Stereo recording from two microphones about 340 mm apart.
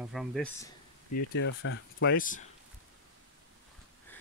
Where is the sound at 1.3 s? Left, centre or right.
Left.